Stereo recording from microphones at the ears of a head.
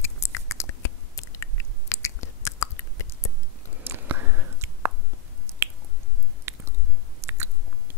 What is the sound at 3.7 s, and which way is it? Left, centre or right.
Chewing, right.